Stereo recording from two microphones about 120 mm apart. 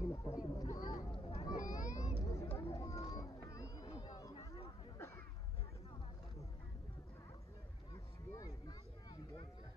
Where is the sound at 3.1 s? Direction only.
30° left (ahead or behind).